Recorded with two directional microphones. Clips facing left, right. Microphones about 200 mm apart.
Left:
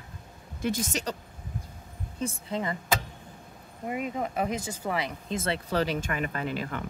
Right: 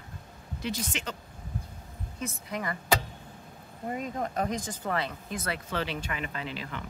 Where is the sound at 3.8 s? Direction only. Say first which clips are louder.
Left 2 dB; 10° left (ahead or behind).